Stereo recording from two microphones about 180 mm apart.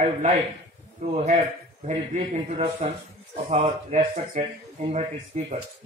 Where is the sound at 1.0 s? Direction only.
35° right (ahead or behind).